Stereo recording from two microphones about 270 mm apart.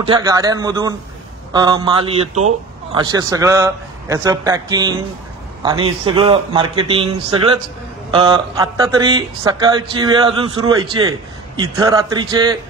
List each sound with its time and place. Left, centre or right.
0.0 s a man's voice: centre